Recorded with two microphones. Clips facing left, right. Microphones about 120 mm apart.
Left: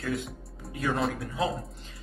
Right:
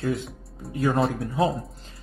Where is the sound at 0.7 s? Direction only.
35° right (ahead or behind).